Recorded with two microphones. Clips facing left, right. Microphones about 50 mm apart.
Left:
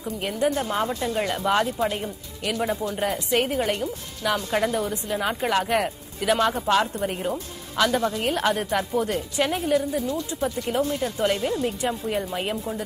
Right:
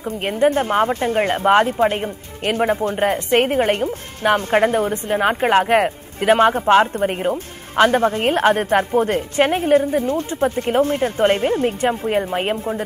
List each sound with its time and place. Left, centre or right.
0.2 s a woman's voice: right